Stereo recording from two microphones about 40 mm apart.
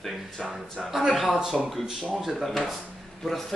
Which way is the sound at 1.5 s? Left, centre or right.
Centre.